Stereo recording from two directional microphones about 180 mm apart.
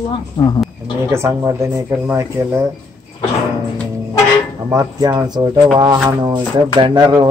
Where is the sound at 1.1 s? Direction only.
15° right (ahead or behind).